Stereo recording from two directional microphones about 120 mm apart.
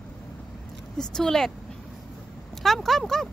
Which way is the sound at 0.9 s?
5° left (ahead or behind).